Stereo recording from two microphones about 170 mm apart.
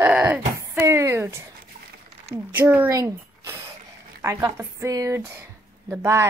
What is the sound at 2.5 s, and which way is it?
Speech, 10° right (ahead or behind).